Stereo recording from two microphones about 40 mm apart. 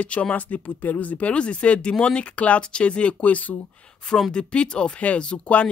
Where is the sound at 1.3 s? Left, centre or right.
Left.